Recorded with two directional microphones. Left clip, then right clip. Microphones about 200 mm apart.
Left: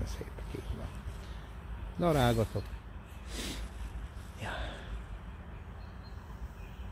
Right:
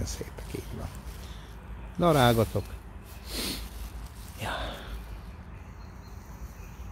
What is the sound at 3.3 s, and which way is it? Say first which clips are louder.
Sniff: right 7 dB; 25° right (ahead or behind).